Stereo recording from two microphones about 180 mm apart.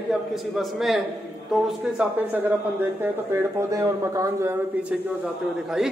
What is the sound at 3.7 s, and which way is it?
Speech, 15° right (ahead or behind).